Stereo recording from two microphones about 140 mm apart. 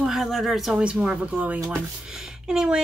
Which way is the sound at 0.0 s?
Centre (ahead or behind).